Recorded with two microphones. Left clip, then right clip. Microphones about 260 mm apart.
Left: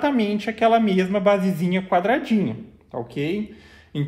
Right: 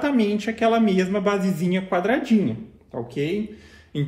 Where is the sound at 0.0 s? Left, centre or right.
Left.